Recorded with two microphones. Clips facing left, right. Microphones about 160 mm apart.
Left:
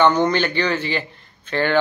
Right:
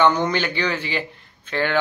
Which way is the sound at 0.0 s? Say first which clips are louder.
Left 2 dB; 10° right (ahead or behind).